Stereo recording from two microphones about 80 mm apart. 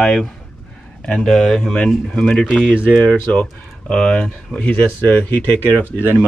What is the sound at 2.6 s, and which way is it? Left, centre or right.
Speech, centre.